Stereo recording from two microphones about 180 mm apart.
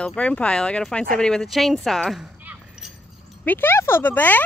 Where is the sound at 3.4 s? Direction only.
10° left (ahead or behind).